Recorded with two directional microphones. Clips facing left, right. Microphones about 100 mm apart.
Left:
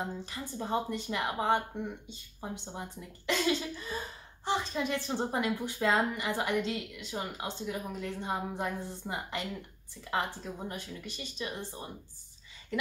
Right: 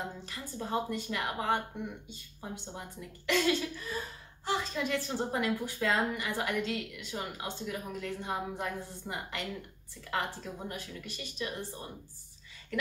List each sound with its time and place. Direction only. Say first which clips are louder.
0.2 s a woman's voice: left 2 dB; 20° left (ahead or behind)